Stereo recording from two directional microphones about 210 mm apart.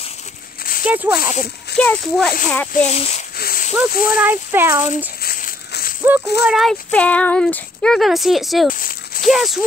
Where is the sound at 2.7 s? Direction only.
30° left (ahead or behind).